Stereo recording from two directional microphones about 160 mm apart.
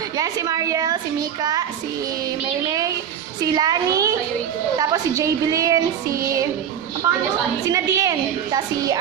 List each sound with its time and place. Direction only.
0.2 s a woman's voice: 20° right (ahead or behind)
3.5 s a woman's voice: 25° right (ahead or behind)
7.6 s a woman's voice: 20° right (ahead or behind)